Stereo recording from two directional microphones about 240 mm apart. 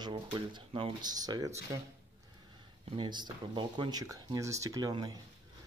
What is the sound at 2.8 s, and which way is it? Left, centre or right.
Speech, right.